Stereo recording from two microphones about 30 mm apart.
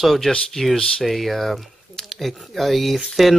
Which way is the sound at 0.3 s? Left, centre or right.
Centre.